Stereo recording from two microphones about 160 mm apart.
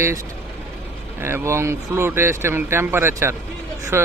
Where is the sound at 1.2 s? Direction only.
15° right (ahead or behind).